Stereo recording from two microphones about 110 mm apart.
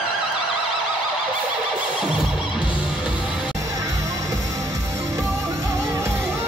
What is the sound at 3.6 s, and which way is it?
Music, 30° right (ahead or behind).